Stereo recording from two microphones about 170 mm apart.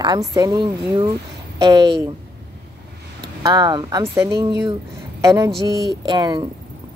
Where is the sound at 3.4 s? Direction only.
25° right (ahead or behind).